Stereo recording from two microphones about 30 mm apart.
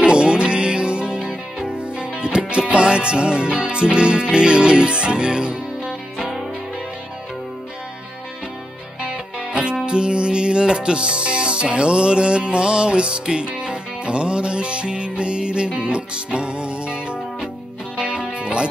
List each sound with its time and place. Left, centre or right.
0.0 s music: right
9.5 s music: right